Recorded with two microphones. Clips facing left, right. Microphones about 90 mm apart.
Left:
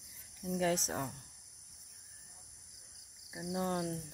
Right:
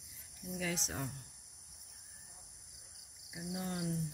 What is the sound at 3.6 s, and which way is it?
Speech, 45° left (ahead or behind).